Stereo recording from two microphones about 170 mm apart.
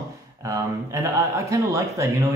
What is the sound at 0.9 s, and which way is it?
Speech, 15° right (ahead or behind).